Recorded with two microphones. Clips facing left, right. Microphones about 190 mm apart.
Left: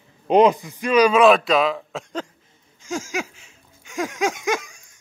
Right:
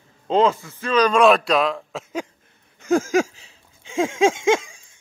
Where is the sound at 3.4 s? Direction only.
30° right (ahead or behind).